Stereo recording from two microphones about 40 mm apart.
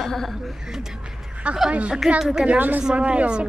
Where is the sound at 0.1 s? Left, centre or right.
Centre.